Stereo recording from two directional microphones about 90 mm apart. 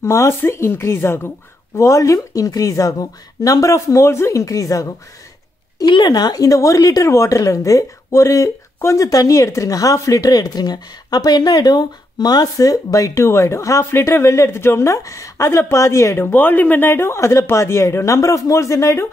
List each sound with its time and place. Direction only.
0.0 s speech: 30° left (ahead or behind)
5.9 s speech: 55° left (ahead or behind); by 16.3 s 30° left (ahead or behind)
16.3 s speech: 20° left (ahead or behind); by 19.0 s 35° left (ahead or behind)